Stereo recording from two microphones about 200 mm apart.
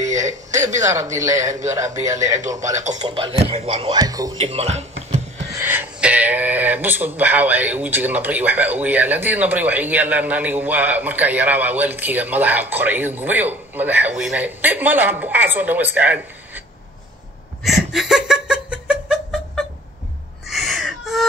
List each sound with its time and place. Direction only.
0.0 s a man's voice: 35° right (ahead or behind)
1.1 s speech: 15° right (ahead or behind)
2.7 s speech: 35° right (ahead or behind)
3.0 s speech: 25° right (ahead or behind)
4.5 s a sound: 30° right (ahead or behind)
5.5 s speech: 10° right (ahead or behind)
17.6 s a sound: centre (ahead or behind)